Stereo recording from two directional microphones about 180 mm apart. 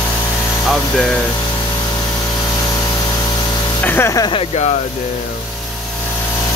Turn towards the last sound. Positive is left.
turn(degrees=30)  # may be behind; listen again after turning